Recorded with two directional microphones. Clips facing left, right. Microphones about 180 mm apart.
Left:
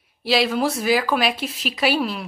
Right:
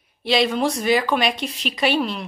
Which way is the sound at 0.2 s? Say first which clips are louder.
Even; 5° left (ahead or behind).